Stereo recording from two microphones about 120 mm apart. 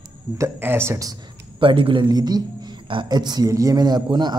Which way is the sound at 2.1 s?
35° right (ahead or behind).